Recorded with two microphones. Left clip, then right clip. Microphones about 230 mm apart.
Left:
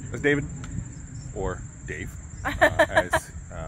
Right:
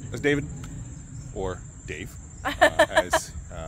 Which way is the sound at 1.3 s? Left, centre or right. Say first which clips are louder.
Even; centre.